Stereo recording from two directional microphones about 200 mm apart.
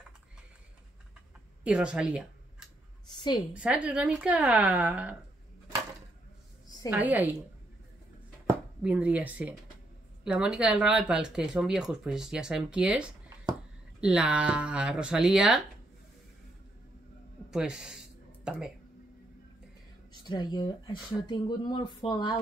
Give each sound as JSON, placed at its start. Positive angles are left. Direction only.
{"t": 1.6, "sound": "speech", "side_deg": -5}
{"t": 3.1, "sound": "a sound", "side_deg": 20}
{"t": 3.5, "sound": "speech", "side_deg": -5}
{"t": 6.9, "sound": "speech", "side_deg": -10}
{"t": 8.8, "sound": "speech", "side_deg": -5}
{"t": 17.5, "sound": "a sound", "side_deg": -5}
{"t": 20.2, "sound": "speech", "side_deg": 20}